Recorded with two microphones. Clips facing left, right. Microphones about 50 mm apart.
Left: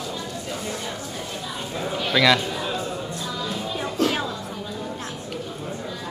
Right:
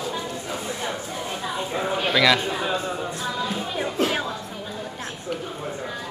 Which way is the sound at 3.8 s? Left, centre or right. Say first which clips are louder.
Left 1 dB; centre.